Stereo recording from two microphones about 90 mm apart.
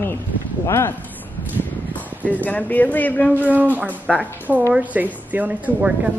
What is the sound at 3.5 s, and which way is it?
A woman's voice, 20° right (ahead or behind).